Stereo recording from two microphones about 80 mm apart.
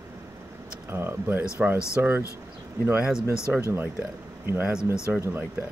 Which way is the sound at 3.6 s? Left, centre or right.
Right.